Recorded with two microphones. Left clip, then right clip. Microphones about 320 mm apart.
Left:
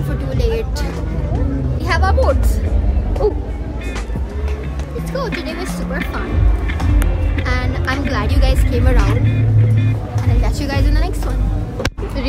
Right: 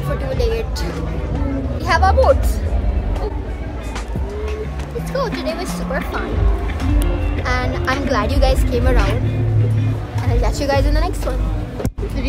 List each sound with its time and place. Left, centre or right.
0.4 s a woman's voice: centre
1.9 s a woman's voice: centre
5.1 s a woman's voice: centre
10.3 s a woman's voice: centre